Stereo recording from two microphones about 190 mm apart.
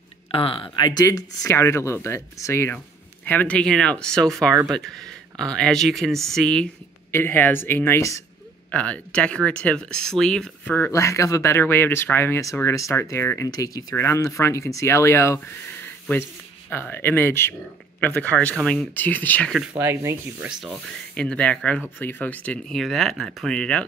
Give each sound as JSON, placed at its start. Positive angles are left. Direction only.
{"t": 0.3, "sound": "speech", "side_deg": 30}
{"t": 3.3, "sound": "rub", "side_deg": 10}
{"t": 8.7, "sound": "speech", "side_deg": 5}
{"t": 16.7, "sound": "speech", "side_deg": 10}
{"t": 19.8, "sound": "rub", "side_deg": -10}